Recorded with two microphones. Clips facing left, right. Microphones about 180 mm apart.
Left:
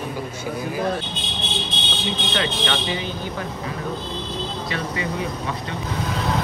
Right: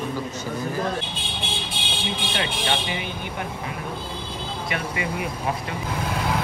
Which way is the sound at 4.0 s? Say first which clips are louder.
Left 4 dB; 10° right (ahead or behind).